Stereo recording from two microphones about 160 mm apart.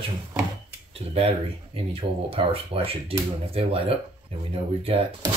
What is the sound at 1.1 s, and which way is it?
Speech, 40° right (ahead or behind).